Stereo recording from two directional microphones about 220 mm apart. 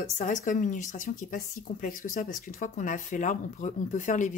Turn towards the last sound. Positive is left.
turn(degrees=35)  # may be behind; listen again after turning